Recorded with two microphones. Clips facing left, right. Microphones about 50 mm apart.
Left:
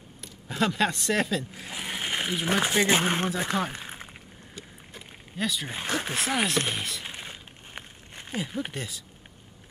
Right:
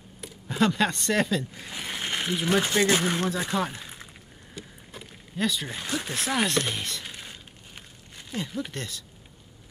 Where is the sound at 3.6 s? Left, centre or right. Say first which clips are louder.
Left 1 dB; left.